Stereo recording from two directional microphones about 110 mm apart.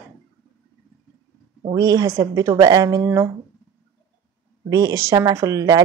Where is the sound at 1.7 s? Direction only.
35° right (ahead or behind).